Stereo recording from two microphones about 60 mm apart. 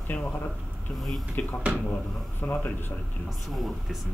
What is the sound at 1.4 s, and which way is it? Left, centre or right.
A man's voice, left.